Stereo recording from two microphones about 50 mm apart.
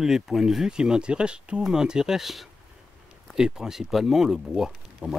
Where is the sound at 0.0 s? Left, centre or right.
Centre.